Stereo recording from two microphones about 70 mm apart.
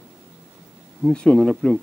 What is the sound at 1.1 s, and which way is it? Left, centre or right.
Speech, centre.